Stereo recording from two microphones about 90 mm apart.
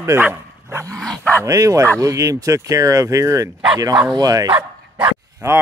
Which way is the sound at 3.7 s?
45° right (ahead or behind).